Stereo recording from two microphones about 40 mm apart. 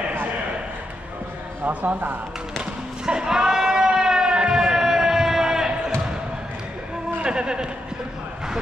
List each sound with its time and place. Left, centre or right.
1.7 s speech: right
3.1 s a sound: centre
7.2 s speech: right